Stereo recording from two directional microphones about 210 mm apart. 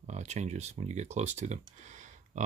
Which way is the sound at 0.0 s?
35° right (ahead or behind).